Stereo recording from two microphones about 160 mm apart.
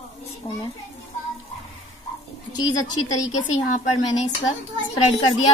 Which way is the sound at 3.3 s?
50° left (ahead or behind).